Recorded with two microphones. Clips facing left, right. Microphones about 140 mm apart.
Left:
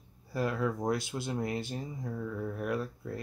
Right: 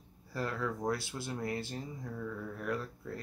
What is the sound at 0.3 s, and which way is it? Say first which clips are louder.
Speech: left 5 dB; 15° left (ahead or behind).